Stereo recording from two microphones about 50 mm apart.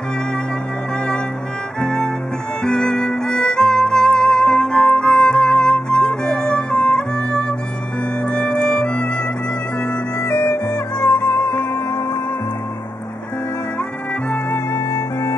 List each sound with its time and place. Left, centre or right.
1.8 s music: centre
10.2 s music: left